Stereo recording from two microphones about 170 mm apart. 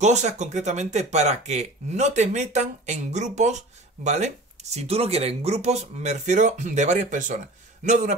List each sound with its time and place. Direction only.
0.0 s speech: 45° right (ahead or behind)